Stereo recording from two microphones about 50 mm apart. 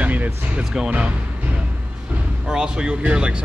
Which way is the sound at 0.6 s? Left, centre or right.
Right.